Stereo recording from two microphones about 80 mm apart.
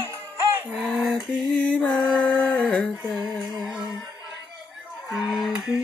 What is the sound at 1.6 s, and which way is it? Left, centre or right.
Mantra, centre.